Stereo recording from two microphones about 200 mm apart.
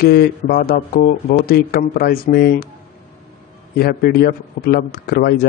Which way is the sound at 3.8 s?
50° left (ahead or behind).